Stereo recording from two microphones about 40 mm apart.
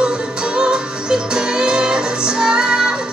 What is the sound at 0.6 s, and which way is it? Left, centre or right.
Music, right.